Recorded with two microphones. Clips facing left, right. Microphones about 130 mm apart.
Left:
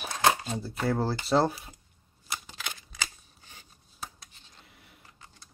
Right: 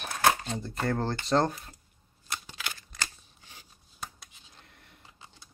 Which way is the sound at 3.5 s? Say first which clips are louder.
Even; 5° right (ahead or behind).